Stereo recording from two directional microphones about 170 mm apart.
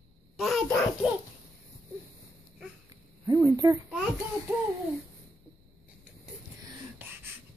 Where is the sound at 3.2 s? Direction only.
20° right (ahead or behind).